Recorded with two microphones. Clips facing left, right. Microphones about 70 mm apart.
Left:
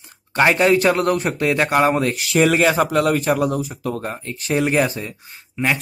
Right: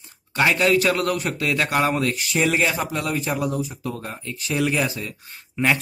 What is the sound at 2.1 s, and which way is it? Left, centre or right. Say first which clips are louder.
A man's voice: left 5 dB; left.